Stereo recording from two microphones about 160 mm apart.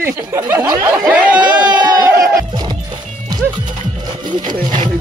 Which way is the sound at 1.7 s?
25° right (ahead or behind).